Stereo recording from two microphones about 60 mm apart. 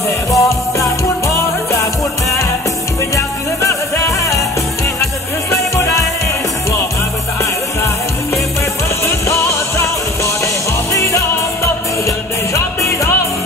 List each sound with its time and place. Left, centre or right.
0.3 s music: left
3.2 s music: left
5.5 s music: left
9.0 s music: left